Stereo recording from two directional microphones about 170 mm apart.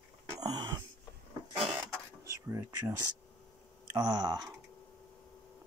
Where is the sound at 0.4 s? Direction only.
25° right (ahead or behind).